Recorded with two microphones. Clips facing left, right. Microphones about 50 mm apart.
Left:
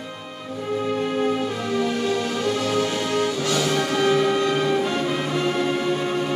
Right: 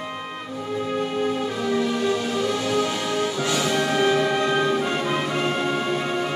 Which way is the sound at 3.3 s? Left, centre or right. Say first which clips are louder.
Left 1 dB; centre.